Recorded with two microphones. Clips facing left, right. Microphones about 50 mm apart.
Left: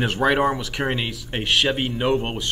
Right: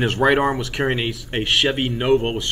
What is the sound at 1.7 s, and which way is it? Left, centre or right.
Speech, centre.